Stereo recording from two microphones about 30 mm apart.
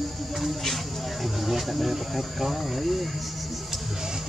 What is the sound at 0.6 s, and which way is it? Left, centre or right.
Speech, centre.